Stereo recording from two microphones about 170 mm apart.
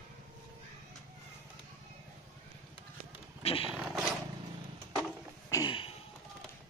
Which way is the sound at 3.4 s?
35° left (ahead or behind).